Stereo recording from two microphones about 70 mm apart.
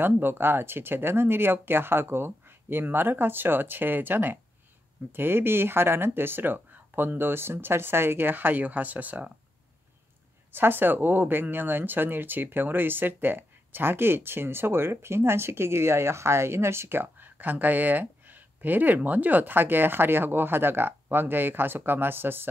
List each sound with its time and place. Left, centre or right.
0.0 s speech: right
10.5 s speech: right